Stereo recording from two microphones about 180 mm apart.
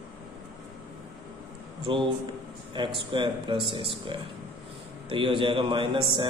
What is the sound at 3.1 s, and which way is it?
Speech, 30° right (ahead or behind).